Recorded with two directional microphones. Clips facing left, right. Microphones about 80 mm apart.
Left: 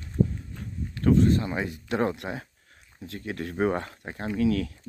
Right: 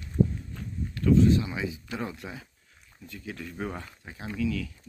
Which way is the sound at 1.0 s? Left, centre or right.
Left.